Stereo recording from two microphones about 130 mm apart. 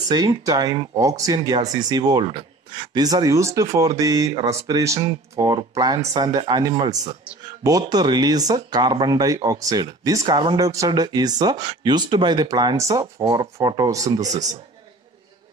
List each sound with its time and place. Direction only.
0.1 s speech: 30° right (ahead or behind)